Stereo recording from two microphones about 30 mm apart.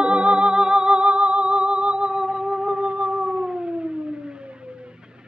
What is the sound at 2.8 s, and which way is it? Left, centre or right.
Music, right.